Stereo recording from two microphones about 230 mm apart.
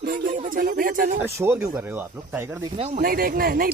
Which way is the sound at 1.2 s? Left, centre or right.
Centre.